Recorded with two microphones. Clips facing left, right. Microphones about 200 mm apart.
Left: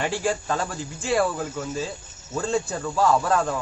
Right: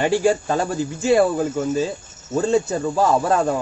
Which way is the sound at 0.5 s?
25° right (ahead or behind).